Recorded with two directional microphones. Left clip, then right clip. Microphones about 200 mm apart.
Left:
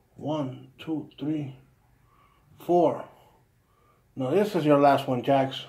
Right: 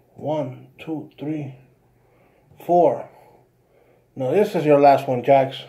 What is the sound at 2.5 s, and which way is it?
Speech, 10° left (ahead or behind).